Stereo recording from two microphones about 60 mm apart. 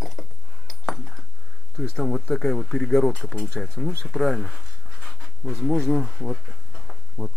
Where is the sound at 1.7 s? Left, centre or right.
Centre.